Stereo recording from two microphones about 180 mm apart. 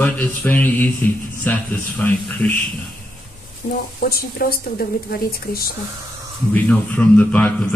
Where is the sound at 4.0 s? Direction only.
55° left (ahead or behind).